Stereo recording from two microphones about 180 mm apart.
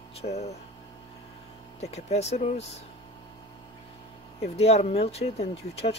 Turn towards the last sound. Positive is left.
turn(degrees=35)  # may be behind; listen again after turning